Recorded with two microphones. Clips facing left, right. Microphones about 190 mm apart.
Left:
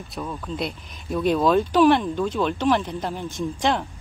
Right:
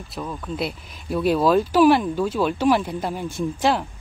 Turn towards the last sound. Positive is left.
turn(degrees=-5)  # may be behind; listen again after turning